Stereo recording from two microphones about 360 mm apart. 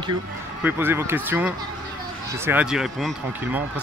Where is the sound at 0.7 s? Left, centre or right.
Centre.